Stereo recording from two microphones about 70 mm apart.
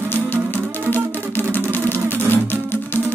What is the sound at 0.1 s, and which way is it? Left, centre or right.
Music, left.